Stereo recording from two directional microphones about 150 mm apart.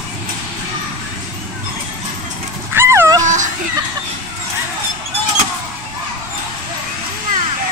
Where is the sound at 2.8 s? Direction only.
15° right (ahead or behind).